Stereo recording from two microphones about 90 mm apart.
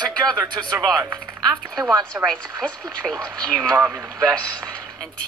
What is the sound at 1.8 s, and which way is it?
Speech, 40° right (ahead or behind).